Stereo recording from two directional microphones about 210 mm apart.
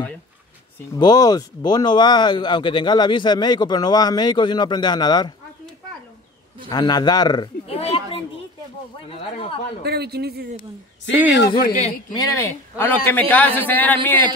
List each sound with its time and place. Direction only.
0.9 s speech: 20° left (ahead or behind)
6.7 s a man's voice: 20° left (ahead or behind)
9.8 s a man's voice: 50° right (ahead or behind)
11.6 s a man's voice: 40° left (ahead or behind)
12.1 s a man's voice: 15° left (ahead or behind)